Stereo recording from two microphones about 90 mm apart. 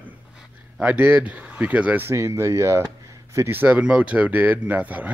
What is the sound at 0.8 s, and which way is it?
Speech, 15° right (ahead or behind).